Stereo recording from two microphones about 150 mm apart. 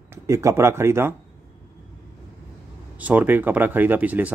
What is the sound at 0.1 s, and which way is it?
Speech, 20° right (ahead or behind).